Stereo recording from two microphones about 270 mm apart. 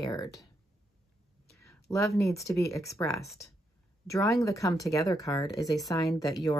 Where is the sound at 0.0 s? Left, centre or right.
Centre.